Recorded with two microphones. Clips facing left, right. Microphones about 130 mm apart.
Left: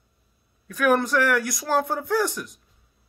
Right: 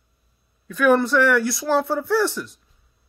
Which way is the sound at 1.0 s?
15° left (ahead or behind).